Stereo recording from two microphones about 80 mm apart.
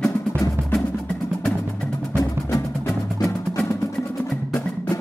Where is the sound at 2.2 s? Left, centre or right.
Left.